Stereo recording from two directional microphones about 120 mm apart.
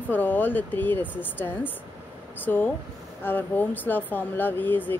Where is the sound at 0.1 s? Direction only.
15° left (ahead or behind).